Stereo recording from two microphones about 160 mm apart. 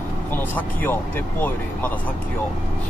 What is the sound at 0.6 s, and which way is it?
Speech, 10° left (ahead or behind).